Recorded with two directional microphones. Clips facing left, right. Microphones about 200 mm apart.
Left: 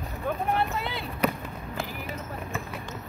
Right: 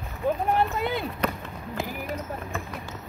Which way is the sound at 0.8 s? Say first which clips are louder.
Right 6 dB; 50° right (ahead or behind).